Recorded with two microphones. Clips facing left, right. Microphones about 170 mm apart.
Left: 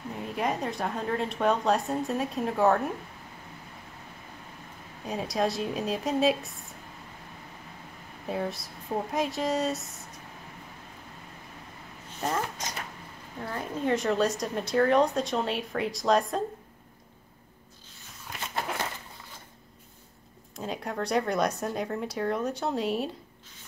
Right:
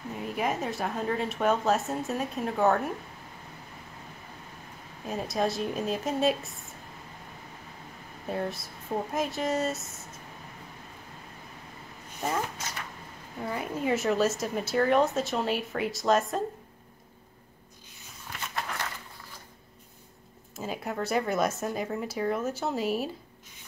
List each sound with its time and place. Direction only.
0.1 s a woman's voice: centre (ahead or behind)
5.0 s a woman's voice: centre (ahead or behind)
8.3 s a woman's voice: centre (ahead or behind)
12.2 s a woman's voice: centre (ahead or behind)
18.5 s a sound: 25° left (ahead or behind)
20.5 s a woman's voice: 5° right (ahead or behind)